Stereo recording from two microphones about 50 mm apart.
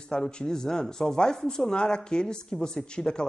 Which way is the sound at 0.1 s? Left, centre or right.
Centre.